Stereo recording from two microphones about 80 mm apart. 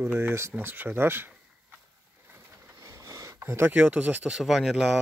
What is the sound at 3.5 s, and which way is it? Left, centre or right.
Speech, right.